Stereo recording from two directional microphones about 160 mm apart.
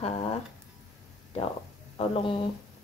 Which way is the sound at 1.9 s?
35° left (ahead or behind).